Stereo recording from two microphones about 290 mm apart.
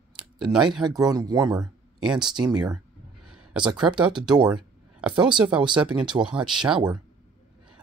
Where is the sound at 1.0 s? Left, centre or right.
Centre.